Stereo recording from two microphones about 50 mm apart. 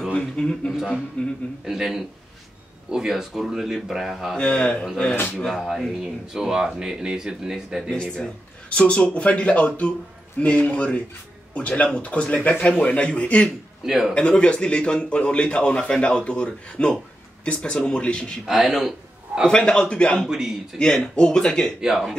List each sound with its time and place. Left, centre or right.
0.1 s a sound: centre
1.2 s a man's voice: left
1.7 s a man's voice: centre
4.4 s a man's voice: left
5.6 s a man's voice: centre
7.9 s a man's voice: centre
13.8 s a man's voice: centre
14.1 s a man's voice: left
18.4 s a man's voice: centre
19.4 s a man's voice: centre
20.2 s speech: centre
20.7 s speech: centre
21.8 s speech: centre